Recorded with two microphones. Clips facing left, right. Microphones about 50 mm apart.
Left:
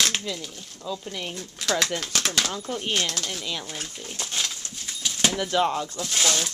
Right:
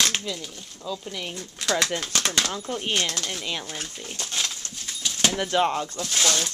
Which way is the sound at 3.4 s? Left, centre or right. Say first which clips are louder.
Right 1 dB; centre.